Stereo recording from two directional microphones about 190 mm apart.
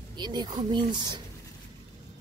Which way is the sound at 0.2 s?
20° right (ahead or behind).